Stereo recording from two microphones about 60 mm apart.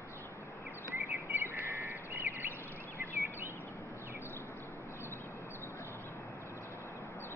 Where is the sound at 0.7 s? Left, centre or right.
Right.